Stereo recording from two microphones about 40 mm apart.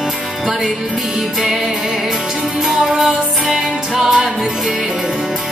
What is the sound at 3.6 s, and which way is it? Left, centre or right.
Music, centre.